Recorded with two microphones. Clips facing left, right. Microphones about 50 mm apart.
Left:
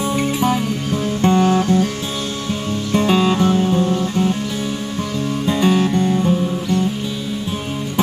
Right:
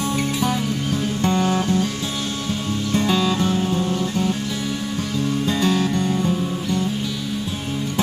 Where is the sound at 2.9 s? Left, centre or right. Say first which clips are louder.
Left 4 dB; left.